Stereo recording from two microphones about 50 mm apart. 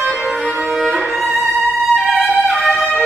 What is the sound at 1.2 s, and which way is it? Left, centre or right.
Violin, right.